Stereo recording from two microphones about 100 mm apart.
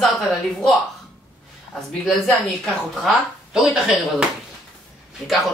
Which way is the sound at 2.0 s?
Centre (ahead or behind).